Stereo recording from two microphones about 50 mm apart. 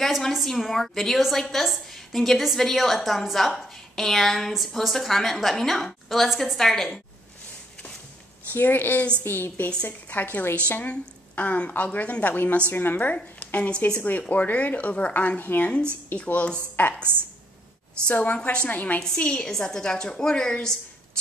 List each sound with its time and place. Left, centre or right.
0.0 s a woman's voice: centre
8.5 s a woman's voice: left
10.0 s a woman's voice: left
18.0 s a woman's voice: left
18.7 s a woman's voice: left
19.1 s a woman's voice: centre